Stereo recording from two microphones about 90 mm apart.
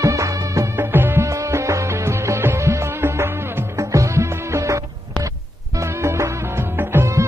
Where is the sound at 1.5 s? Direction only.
35° right (ahead or behind).